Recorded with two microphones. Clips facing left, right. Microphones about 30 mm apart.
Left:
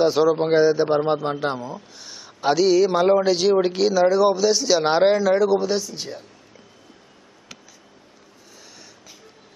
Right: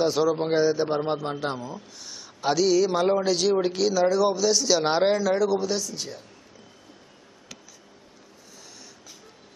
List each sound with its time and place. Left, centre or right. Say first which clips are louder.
0.0 s a man's voice: left 5 dB; centre